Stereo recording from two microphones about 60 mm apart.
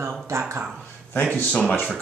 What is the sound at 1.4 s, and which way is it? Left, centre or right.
Speech, left.